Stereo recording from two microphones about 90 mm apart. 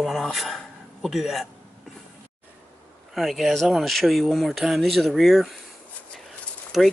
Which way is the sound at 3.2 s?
Centre (ahead or behind).